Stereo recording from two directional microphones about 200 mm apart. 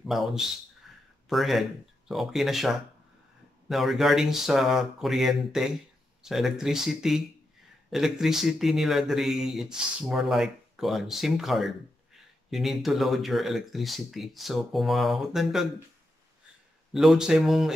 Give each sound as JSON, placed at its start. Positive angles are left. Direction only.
{"t": 0.0, "sound": "speech", "side_deg": 0}
{"t": 0.8, "sound": "a sound", "side_deg": 0}
{"t": 1.3, "sound": "speech", "side_deg": 0}
{"t": 16.9, "sound": "speech", "side_deg": 0}